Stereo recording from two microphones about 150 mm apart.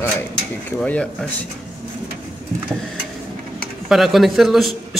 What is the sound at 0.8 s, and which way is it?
Speech, 10° left (ahead or behind).